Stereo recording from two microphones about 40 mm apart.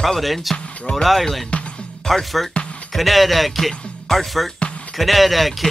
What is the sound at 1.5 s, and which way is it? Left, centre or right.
Music, left.